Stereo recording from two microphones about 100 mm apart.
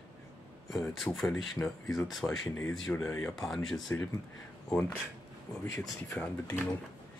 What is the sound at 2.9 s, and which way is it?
Speech, 25° left (ahead or behind).